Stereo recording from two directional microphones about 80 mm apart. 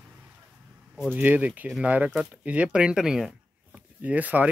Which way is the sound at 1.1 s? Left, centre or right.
Centre.